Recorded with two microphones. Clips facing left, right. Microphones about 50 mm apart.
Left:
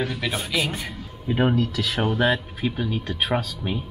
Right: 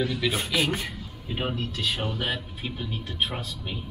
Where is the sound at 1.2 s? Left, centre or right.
Left.